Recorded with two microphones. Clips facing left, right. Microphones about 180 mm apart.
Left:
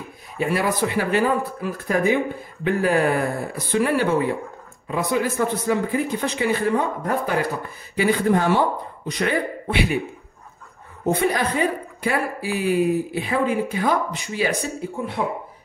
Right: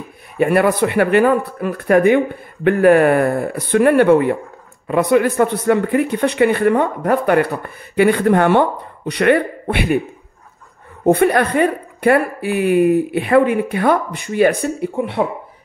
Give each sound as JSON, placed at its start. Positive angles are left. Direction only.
{"t": 0.4, "sound": "speech", "side_deg": -60}
{"t": 11.1, "sound": "speech", "side_deg": -60}